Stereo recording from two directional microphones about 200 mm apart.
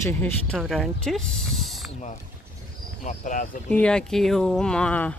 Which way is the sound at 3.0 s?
40° left (ahead or behind).